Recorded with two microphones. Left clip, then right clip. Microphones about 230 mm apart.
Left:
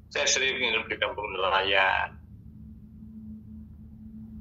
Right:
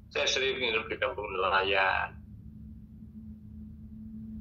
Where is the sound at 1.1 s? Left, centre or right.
Left.